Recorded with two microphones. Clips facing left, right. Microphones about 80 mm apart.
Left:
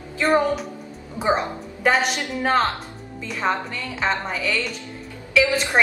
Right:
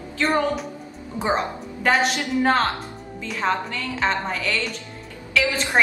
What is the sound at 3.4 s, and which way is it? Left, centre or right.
A woman's voice, centre.